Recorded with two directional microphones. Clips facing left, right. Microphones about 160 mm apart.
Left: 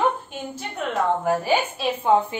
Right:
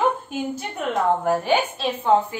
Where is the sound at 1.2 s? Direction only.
5° left (ahead or behind).